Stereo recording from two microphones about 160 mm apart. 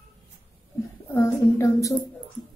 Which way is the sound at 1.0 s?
15° left (ahead or behind).